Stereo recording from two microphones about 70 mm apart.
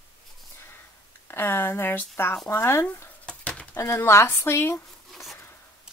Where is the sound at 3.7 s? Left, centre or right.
Left.